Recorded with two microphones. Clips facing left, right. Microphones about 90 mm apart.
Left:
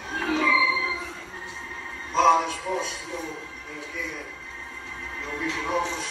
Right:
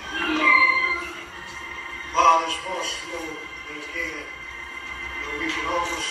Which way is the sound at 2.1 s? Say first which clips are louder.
Right 2 dB; 15° left (ahead or behind).